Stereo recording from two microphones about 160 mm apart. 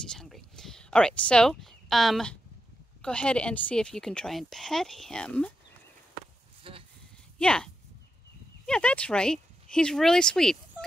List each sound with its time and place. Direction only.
0.1 s a woman's voice: centre (ahead or behind)
6.7 s a sound: 35° right (ahead or behind)
7.3 s a woman's voice: 5° left (ahead or behind)